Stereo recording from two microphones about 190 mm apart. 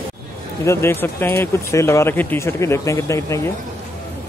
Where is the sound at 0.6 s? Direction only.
15° left (ahead or behind).